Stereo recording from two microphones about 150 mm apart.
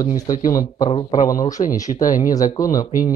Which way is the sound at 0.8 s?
30° left (ahead or behind).